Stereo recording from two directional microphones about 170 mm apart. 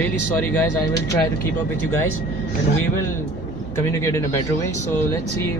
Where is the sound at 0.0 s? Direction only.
10° left (ahead or behind).